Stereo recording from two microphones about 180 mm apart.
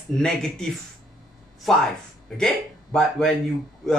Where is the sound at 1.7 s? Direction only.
Centre (ahead or behind).